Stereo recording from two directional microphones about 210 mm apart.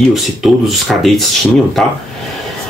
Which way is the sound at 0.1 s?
Centre (ahead or behind).